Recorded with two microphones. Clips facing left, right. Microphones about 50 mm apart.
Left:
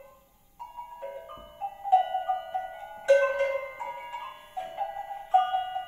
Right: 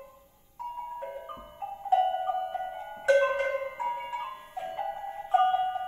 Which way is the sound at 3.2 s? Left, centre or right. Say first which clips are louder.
Left 1 dB; right.